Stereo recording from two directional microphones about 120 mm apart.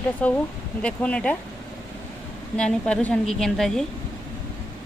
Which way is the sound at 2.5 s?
10° left (ahead or behind).